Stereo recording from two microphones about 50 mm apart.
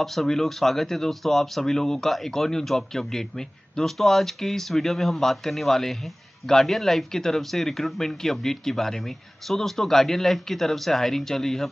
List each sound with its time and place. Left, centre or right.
0.0 s speech: centre